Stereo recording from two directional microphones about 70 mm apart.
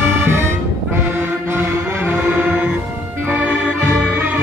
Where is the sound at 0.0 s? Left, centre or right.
Right.